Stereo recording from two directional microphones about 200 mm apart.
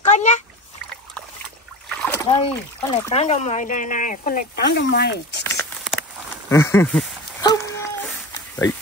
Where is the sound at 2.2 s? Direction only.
25° left (ahead or behind); by 5.4 s 55° left (ahead or behind).